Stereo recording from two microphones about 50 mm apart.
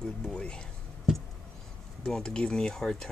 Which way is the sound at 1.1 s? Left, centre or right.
Centre.